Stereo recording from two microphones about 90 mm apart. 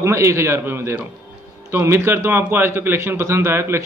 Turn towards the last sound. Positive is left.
turn(degrees=-30)  # may be behind; listen again after turning